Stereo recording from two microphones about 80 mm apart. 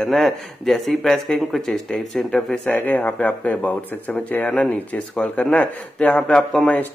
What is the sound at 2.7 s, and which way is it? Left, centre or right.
Speech, centre.